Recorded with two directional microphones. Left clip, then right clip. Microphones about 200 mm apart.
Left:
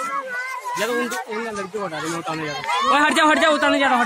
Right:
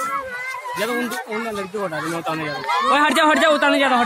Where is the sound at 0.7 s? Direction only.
50° right (ahead or behind).